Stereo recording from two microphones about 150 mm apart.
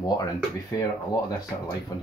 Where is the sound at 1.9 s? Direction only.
25° left (ahead or behind).